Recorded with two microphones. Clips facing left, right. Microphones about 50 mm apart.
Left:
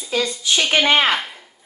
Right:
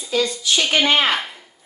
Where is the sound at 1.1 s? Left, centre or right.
Centre.